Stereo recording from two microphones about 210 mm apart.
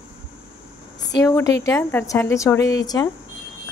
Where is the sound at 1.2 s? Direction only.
15° left (ahead or behind).